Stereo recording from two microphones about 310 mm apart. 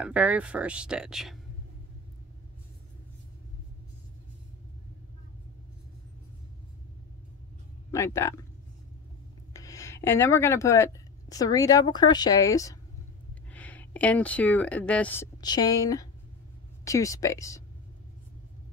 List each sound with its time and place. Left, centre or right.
0.0 s speech: centre
7.9 s speech: centre
9.5 s speech: centre